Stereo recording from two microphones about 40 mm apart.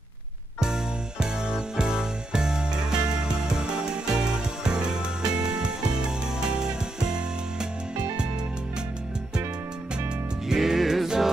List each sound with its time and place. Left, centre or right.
0.6 s music: centre
10.5 s music: centre